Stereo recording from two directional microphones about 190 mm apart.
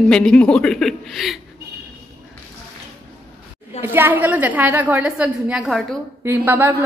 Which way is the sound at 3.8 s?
10° right (ahead or behind).